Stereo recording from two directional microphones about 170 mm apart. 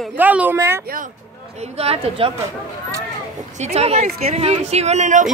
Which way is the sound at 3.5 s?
40° right (ahead or behind).